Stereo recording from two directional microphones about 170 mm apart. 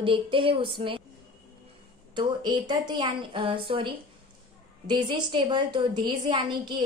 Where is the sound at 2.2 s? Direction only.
25° right (ahead or behind).